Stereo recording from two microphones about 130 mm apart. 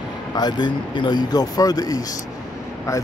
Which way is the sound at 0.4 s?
35° left (ahead or behind).